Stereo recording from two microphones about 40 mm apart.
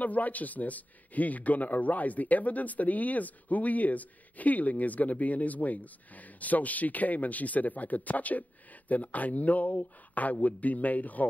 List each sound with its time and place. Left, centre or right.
0.0 s a man's voice: left